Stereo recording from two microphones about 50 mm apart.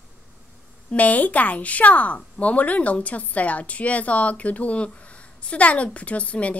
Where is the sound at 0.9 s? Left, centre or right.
Left.